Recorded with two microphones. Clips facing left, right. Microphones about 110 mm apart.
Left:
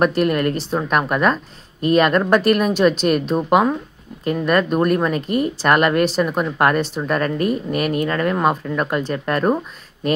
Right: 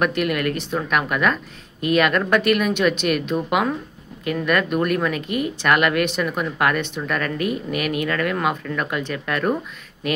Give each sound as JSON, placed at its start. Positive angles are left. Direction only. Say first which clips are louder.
{"t": 0.0, "sound": "speech", "louder": "left 4 dB", "side_deg": 35}